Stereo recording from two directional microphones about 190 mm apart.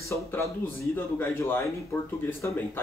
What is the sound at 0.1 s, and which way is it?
Speech, 15° left (ahead or behind).